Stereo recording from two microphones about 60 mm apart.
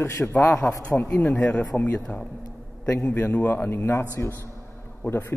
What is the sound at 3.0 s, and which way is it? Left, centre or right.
Speech, left.